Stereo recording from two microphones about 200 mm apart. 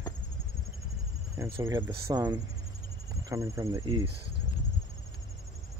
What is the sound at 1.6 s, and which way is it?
Speech, 15° right (ahead or behind).